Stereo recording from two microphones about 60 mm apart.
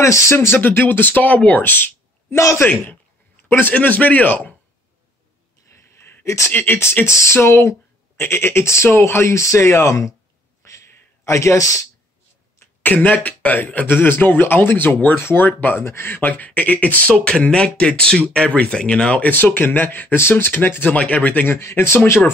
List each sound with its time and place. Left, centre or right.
0.0 s speech: left
0.6 s a man's voice: left
2.3 s speech: left
2.7 s a man's voice: left
5.9 s a sound: left
6.2 s speech: left
6.5 s a man's voice: left
7.1 s speech: left
10.6 s a sound: left
12.8 s a man's voice: left
16.2 s speech: left
19.3 s a man's voice: left
21.5 s speech: left